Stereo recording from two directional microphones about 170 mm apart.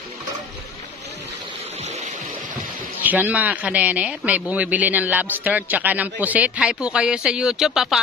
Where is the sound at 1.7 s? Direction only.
40° right (ahead or behind).